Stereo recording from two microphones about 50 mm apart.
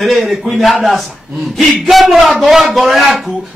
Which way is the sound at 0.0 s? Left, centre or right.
Centre.